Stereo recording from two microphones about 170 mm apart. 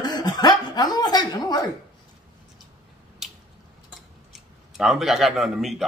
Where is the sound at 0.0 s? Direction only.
25° left (ahead or behind).